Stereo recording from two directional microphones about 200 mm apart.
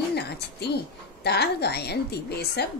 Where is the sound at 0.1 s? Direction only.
55° left (ahead or behind).